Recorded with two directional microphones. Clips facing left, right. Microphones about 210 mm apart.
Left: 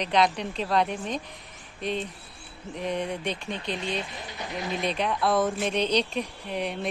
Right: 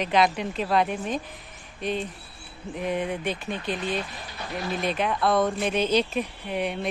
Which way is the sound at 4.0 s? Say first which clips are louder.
Even; 20° left (ahead or behind).